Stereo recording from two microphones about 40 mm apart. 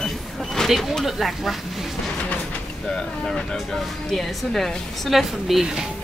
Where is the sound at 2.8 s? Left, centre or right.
Centre.